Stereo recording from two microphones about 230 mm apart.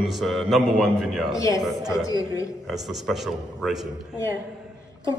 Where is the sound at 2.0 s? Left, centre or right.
Centre.